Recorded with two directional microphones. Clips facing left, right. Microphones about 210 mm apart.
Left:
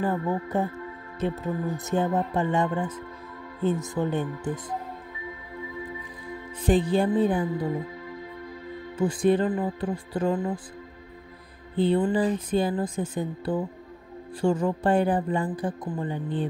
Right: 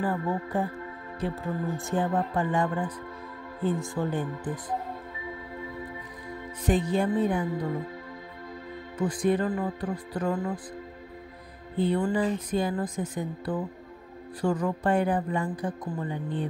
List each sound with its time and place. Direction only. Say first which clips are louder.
0.0 s speech: left 2 dB; 25° left (ahead or behind)
6.6 s speech: left 3 dB; 30° left (ahead or behind)
8.9 s speech: left 3 dB; 30° left (ahead or behind)
11.7 s speech: left 3 dB; 30° left (ahead or behind)